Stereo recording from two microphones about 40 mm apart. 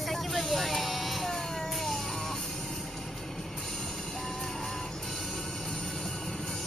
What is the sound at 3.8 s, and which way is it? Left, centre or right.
Music, centre.